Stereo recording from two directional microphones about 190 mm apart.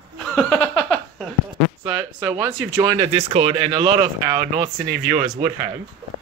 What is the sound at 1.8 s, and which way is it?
Speech, 10° right (ahead or behind).